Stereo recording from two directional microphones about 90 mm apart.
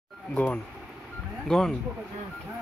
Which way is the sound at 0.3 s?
15° left (ahead or behind).